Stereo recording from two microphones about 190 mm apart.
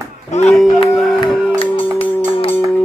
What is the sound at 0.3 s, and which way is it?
Speech, 40° left (ahead or behind).